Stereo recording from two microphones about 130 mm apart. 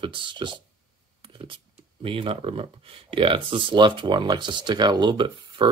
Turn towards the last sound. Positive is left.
turn(degrees=-40)  # may be behind; listen again after turning